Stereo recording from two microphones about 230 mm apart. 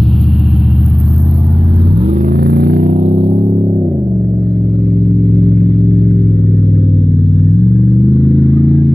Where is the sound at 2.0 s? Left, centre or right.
Right.